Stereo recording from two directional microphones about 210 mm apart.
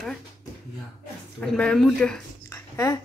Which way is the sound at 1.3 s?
5° left (ahead or behind).